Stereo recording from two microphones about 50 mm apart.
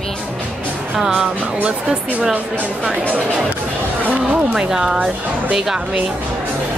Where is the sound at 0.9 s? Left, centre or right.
Centre.